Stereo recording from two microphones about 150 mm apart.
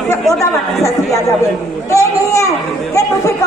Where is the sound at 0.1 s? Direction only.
20° left (ahead or behind).